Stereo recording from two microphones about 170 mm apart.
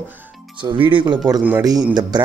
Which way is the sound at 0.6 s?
30° right (ahead or behind).